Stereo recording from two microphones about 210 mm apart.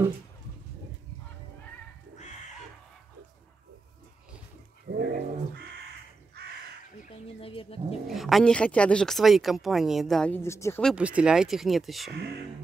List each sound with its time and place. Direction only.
4.8 s cat: 50° right (ahead or behind)
7.0 s bird: 30° left (ahead or behind)
8.1 s speech: centre (ahead or behind)
10.9 s speech: 5° right (ahead or behind)